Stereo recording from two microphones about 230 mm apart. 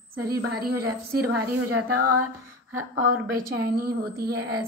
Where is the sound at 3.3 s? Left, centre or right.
Right.